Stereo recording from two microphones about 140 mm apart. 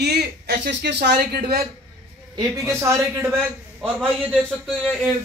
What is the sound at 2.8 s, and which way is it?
Speech, 20° right (ahead or behind).